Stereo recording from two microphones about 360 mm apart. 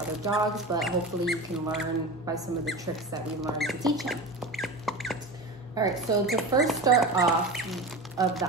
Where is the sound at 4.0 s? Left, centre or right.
Centre.